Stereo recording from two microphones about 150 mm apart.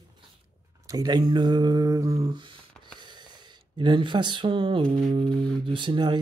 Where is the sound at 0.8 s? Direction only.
25° right (ahead or behind).